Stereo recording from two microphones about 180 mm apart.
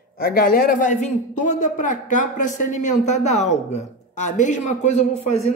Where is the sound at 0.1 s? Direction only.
55° left (ahead or behind).